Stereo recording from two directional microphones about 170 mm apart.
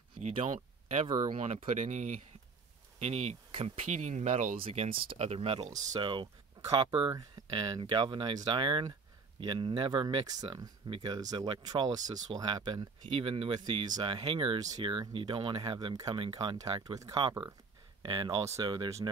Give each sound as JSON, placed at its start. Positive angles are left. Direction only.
{"t": 0.2, "sound": "a sound", "side_deg": -40}
{"t": 0.5, "sound": "speech", "side_deg": -45}
{"t": 1.0, "sound": "speech", "side_deg": -25}
{"t": 1.4, "sound": "speech", "side_deg": -40}
{"t": 5.9, "sound": "speech", "side_deg": -30}